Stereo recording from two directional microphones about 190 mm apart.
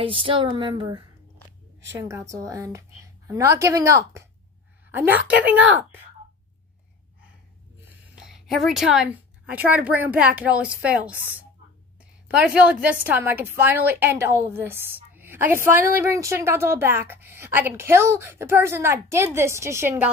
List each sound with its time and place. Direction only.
0.0 s a woman's voice: 30° right (ahead or behind); by 5.9 s 10° right (ahead or behind)
7.9 s a woman's voice: centre (ahead or behind)